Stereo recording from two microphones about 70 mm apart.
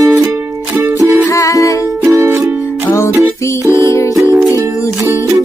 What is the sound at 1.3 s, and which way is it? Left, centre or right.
Music, left.